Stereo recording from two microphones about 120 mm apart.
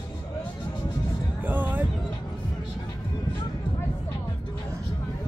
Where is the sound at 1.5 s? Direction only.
15° right (ahead or behind).